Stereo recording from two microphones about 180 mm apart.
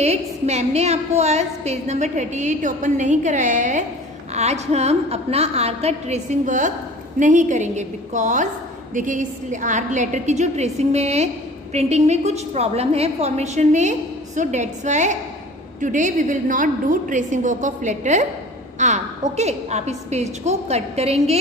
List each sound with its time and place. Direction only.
0.0 s a woman's voice: 35° right (ahead or behind)